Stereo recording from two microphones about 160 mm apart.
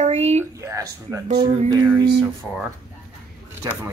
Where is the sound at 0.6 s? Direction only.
20° right (ahead or behind).